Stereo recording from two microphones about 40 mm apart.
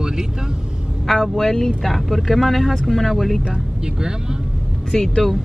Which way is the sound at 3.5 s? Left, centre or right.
Centre.